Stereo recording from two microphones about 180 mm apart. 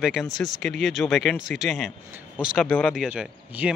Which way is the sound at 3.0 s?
5° right (ahead or behind).